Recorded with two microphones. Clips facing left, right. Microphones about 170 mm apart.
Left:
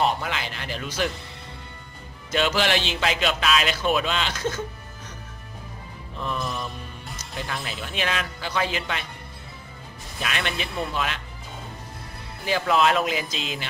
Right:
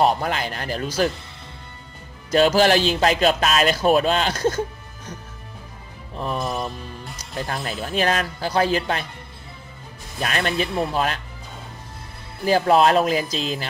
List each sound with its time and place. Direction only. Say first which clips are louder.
0.0 s a man's voice: right 5 dB; 45° right (ahead or behind)
2.3 s speech: right 7 dB; 40° right (ahead or behind)
6.1 s speech: right 4 dB; 35° right (ahead or behind)
7.4 s speech: right 6 dB; 40° right (ahead or behind)
10.2 s speech: right 6 dB; 40° right (ahead or behind)
12.4 s speech: right 5 dB; 40° right (ahead or behind)